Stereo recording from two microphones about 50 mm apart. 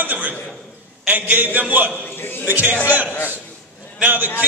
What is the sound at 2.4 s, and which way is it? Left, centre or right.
A man's voice, right.